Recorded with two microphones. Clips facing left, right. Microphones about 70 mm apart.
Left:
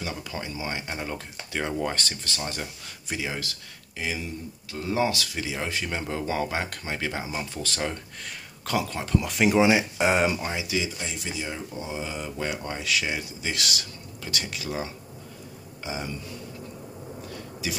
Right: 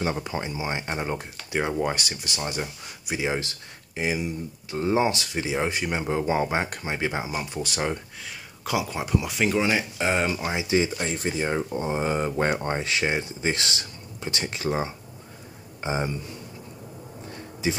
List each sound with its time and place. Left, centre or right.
0.0 s speech: right; by 9.5 s centre
9.5 s speech: centre
10.4 s speech: right
10.8 s speech: right
17.3 s a sound: right